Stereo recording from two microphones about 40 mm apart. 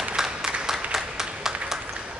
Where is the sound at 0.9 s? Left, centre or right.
Centre.